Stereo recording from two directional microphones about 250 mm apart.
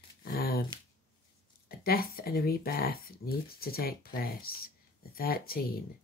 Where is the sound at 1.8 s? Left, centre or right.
Left.